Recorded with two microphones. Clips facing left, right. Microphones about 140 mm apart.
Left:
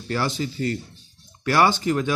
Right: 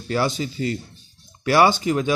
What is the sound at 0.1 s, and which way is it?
A man's voice, 15° right (ahead or behind).